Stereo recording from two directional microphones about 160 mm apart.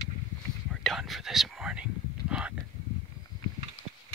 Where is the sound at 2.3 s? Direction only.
5° right (ahead or behind).